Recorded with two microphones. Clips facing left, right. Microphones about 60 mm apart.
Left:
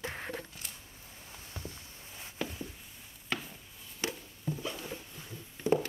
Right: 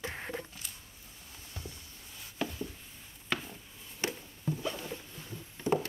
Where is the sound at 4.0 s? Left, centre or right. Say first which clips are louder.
Right 1 dB; right.